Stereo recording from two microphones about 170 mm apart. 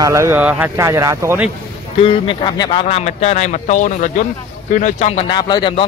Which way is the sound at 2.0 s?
30° left (ahead or behind).